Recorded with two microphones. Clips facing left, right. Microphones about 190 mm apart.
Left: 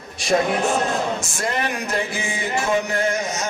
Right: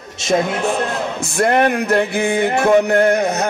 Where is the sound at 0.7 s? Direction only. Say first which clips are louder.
Right 1 dB; 60° right (ahead or behind).